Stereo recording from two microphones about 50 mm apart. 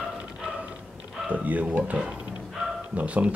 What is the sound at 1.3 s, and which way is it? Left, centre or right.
Speech, right.